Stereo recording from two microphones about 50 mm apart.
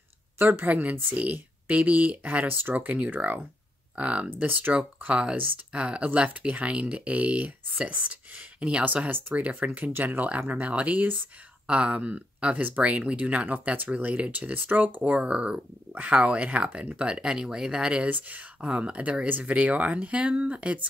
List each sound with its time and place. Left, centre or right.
0.4 s speech: right
4.7 s speech: right
8.8 s speech: right
15.0 s speech: right
17.0 s speech: centre
18.0 s speech: right